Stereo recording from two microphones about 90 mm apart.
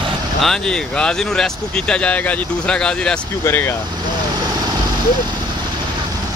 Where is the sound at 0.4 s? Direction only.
5° left (ahead or behind).